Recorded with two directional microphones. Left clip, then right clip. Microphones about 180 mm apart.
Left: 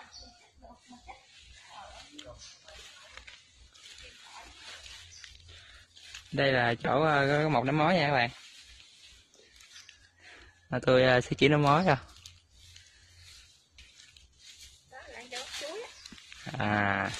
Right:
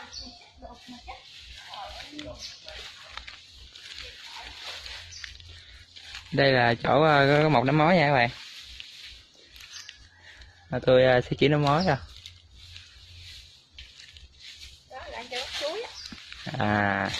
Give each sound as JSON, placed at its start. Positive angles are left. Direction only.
{"t": 6.3, "sound": "speech", "side_deg": 15}
{"t": 10.7, "sound": "speech", "side_deg": 40}
{"t": 16.4, "sound": "a sound", "side_deg": 20}